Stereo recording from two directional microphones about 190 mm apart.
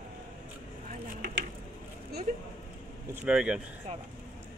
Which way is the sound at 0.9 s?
55° right (ahead or behind).